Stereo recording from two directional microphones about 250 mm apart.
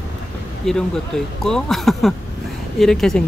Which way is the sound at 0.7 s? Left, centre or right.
Centre.